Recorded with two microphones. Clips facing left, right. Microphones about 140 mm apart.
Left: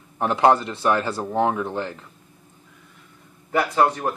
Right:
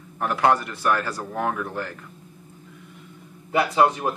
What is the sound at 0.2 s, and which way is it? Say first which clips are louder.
Speech: left 3 dB; 25° left (ahead or behind).